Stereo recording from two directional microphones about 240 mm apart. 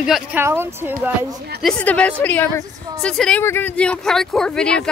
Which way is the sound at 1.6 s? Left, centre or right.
Centre.